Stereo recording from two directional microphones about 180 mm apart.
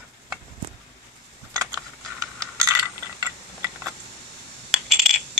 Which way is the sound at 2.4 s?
20° right (ahead or behind).